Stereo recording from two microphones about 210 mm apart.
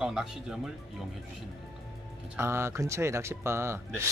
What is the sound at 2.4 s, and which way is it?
Speech, 10° right (ahead or behind).